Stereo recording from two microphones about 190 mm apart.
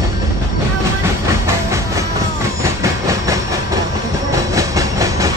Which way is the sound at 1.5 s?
15° right (ahead or behind).